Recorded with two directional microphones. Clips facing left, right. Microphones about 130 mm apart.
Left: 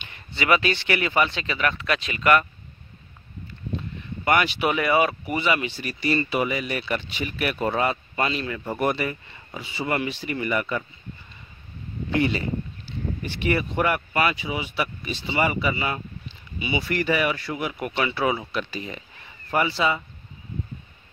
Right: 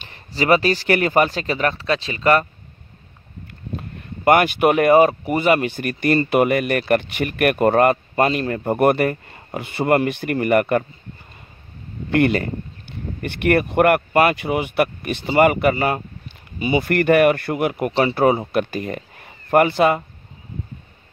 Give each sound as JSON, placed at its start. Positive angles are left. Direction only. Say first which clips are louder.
{"t": 0.0, "sound": "speech", "louder": "right 6 dB", "side_deg": -35}
{"t": 3.4, "sound": "speech", "louder": "even", "side_deg": -50}
{"t": 12.1, "sound": "speech", "louder": "right 6 dB", "side_deg": -60}